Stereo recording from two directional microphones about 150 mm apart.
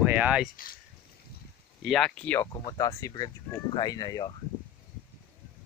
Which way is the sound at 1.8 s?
5° left (ahead or behind).